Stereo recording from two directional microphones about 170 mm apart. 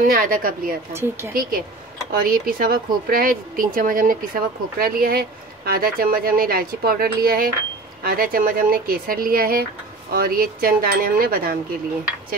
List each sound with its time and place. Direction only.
0.0 s speech: 55° right (ahead or behind)
0.9 s speech: 15° right (ahead or behind)
2.1 s speech: 60° right (ahead or behind)